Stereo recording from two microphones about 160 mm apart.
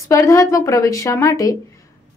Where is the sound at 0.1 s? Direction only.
20° left (ahead or behind).